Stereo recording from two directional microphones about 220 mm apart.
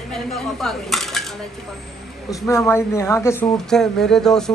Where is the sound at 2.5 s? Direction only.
10° left (ahead or behind).